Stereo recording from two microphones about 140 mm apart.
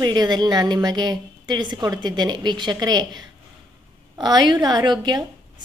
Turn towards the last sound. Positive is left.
turn(degrees=-30)  # may be behind; listen again after turning